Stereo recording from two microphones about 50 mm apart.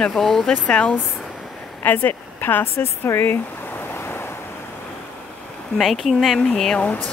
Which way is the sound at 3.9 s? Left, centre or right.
Left.